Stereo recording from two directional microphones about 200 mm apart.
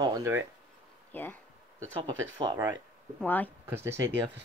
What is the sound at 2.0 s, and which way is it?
Speech, 20° right (ahead or behind).